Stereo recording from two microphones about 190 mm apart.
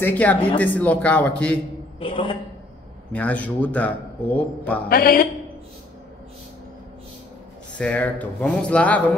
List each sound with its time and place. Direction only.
0.0 s a man's voice: 10° left (ahead or behind)
2.0 s a man's voice: 25° left (ahead or behind)
3.1 s a man's voice: 5° left (ahead or behind)
4.8 s a man's voice: 50° left (ahead or behind)
7.7 s a man's voice: 5° left (ahead or behind)